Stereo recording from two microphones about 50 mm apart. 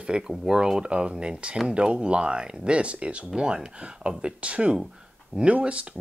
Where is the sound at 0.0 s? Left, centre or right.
Centre.